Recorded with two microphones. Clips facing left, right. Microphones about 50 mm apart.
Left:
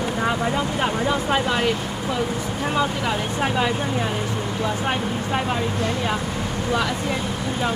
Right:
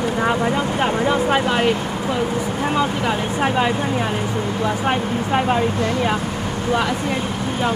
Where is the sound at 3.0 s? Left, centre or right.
Centre.